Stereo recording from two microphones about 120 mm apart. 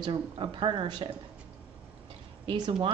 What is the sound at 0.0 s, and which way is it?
Speech, 40° right (ahead or behind).